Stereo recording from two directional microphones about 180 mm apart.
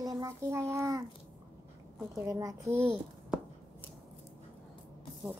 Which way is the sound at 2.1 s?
15° right (ahead or behind).